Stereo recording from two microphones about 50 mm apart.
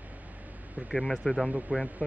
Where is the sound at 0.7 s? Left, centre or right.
Right.